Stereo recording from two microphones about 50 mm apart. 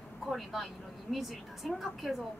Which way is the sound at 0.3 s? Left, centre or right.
Centre.